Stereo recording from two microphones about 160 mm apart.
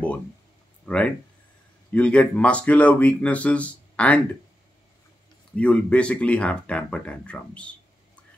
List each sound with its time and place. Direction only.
0.8 s speech: 10° left (ahead or behind)
5.6 s speech: 5° left (ahead or behind)